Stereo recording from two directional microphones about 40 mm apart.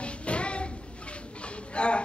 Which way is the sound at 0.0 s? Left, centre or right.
Left.